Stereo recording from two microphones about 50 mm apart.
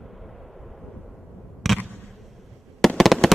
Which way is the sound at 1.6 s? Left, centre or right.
Centre.